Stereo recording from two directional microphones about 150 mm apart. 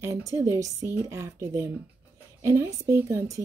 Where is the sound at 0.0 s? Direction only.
20° right (ahead or behind).